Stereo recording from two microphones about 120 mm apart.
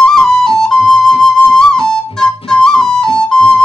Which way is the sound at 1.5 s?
5° left (ahead or behind).